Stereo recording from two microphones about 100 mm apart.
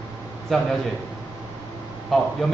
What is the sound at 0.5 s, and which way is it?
Speech, 5° left (ahead or behind).